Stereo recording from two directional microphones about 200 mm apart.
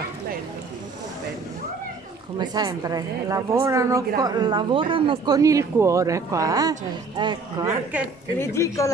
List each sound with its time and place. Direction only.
2.3 s a woman's voice: 20° right (ahead or behind)
8.4 s speech: 15° left (ahead or behind)